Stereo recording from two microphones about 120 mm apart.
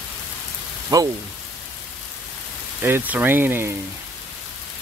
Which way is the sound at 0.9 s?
35° right (ahead or behind).